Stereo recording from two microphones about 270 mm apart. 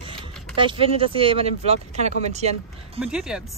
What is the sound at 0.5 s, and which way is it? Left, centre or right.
Speech, centre.